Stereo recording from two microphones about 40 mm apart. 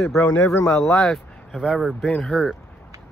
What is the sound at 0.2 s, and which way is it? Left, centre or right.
Speech, left.